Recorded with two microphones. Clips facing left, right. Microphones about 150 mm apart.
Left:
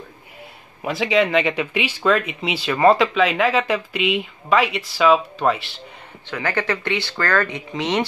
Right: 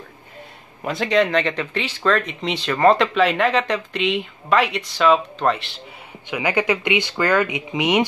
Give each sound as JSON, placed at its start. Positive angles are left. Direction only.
{"t": 0.8, "sound": "speech", "side_deg": 0}
{"t": 6.2, "sound": "speech", "side_deg": -15}